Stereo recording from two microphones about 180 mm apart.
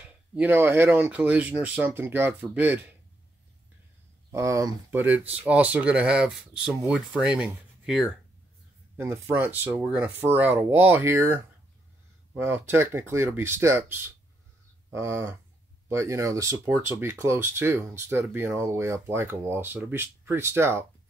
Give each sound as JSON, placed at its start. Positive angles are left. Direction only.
{"t": 0.0, "sound": "speech", "side_deg": -10}
{"t": 4.3, "sound": "speech", "side_deg": -15}
{"t": 8.9, "sound": "speech", "side_deg": -15}
{"t": 12.4, "sound": "speech", "side_deg": -10}
{"t": 14.9, "sound": "a sound", "side_deg": -15}
{"t": 15.9, "sound": "speech", "side_deg": -15}